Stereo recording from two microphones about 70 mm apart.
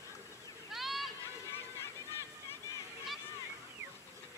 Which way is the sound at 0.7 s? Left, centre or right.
Centre.